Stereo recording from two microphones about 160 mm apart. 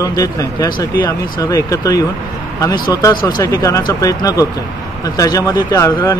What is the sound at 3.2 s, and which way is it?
Speech, 25° left (ahead or behind).